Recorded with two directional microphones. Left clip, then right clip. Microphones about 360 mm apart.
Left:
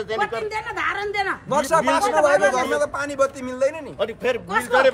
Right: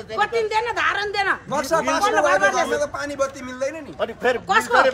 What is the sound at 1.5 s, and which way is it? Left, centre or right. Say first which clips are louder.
A man's voice: left 2 dB; left.